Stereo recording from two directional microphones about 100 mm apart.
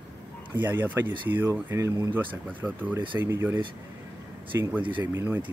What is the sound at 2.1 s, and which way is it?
Speech, 20° right (ahead or behind).